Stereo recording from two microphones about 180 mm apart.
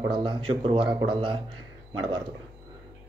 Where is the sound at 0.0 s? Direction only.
25° right (ahead or behind).